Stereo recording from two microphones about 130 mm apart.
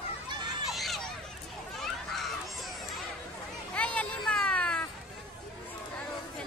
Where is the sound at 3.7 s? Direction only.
10° left (ahead or behind).